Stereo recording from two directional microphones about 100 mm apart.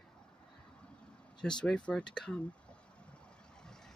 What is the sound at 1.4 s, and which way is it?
Speech, 5° left (ahead or behind).